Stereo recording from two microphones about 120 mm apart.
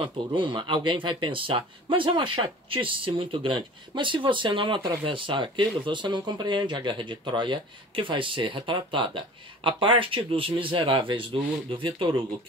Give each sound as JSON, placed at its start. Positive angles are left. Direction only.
{"t": 0.0, "sound": "speech", "side_deg": -45}